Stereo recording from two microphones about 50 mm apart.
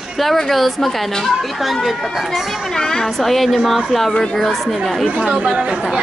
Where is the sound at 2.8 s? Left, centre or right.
Centre.